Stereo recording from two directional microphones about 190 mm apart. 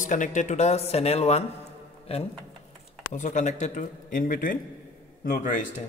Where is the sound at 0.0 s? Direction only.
40° left (ahead or behind).